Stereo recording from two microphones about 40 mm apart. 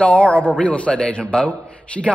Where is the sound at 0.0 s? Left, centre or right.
Left.